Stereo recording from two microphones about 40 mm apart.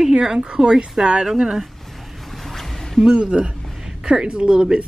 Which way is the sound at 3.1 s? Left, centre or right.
Right.